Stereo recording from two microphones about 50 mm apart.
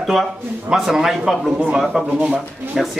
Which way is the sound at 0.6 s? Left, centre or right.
Centre.